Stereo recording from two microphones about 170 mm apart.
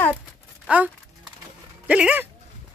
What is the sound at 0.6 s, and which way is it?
Speech, 10° right (ahead or behind).